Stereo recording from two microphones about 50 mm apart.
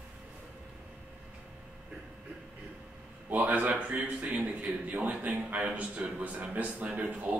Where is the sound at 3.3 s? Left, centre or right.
Right.